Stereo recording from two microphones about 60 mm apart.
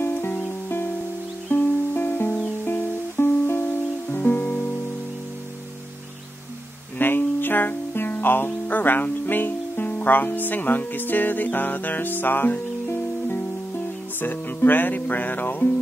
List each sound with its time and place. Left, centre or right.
0.0 s music: left
7.0 s music: left